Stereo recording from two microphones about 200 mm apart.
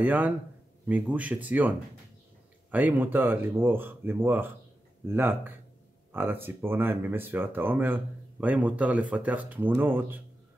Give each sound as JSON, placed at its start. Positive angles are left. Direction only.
{"t": 0.0, "sound": "speech", "side_deg": -10}
{"t": 2.7, "sound": "speech", "side_deg": -10}